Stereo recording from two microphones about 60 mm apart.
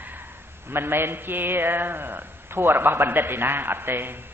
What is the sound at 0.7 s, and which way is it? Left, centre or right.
A man's voice, right.